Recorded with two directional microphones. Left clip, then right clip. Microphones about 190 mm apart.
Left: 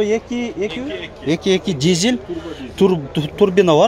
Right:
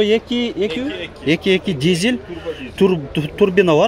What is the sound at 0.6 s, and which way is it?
Speech, 35° right (ahead or behind).